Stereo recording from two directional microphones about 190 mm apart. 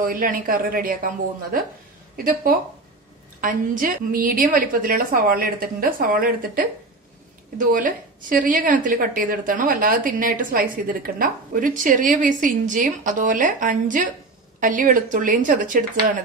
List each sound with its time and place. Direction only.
0.0 s a woman's voice: 50° right (ahead or behind)